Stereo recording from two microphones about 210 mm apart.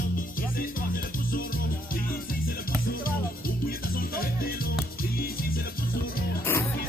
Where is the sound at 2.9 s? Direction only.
45° left (ahead or behind).